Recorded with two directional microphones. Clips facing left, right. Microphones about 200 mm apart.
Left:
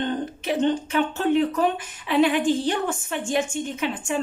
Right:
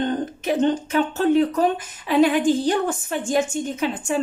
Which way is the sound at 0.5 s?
40° right (ahead or behind).